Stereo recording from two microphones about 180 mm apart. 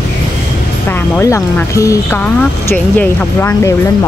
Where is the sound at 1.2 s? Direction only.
15° left (ahead or behind).